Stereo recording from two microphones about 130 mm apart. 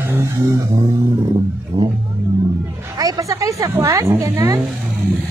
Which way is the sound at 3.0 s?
25° right (ahead or behind).